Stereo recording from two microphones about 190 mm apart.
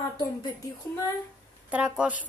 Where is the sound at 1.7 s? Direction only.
5° right (ahead or behind).